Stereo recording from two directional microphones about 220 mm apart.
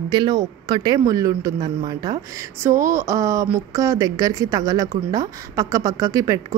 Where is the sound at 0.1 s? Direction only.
20° right (ahead or behind).